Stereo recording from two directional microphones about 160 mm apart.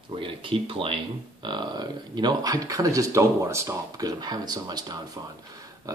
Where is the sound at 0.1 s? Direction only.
35° right (ahead or behind).